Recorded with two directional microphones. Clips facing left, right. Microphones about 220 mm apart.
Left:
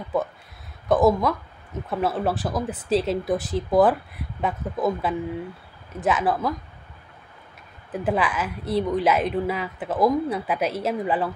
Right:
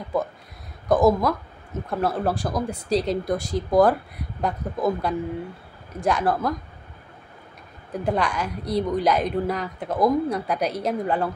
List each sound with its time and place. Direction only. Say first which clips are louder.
0.8 s a woman's voice: even; centre (ahead or behind)
7.9 s a woman's voice: even; 5° left (ahead or behind)